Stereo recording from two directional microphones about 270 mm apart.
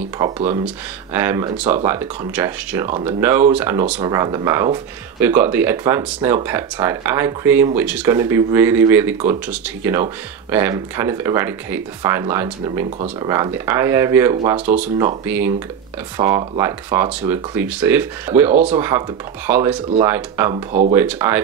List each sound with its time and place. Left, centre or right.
0.2 s speech: centre
20.5 s speech: right
20.9 s speech: centre